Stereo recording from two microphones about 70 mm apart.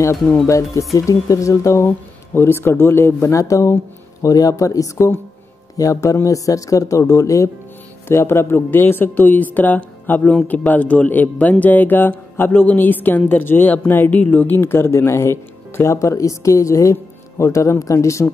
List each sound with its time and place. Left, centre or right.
0.5 s speech: left
2.3 s a woman's voice: left